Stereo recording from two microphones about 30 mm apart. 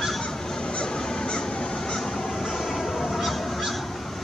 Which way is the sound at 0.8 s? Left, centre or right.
Left.